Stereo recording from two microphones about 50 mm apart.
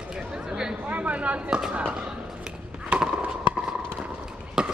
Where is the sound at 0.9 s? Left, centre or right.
Right.